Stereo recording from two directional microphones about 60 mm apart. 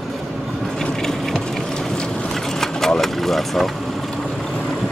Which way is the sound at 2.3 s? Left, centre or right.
Centre.